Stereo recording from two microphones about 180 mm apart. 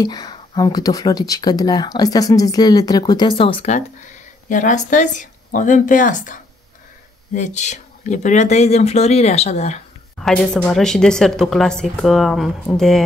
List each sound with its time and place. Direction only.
0.0 s speech: 20° left (ahead or behind)
4.5 s speech: 45° left (ahead or behind)
10.1 s a woman's voice: 5° left (ahead or behind)